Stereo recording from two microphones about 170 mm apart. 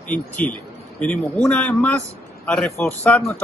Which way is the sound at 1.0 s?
5° left (ahead or behind).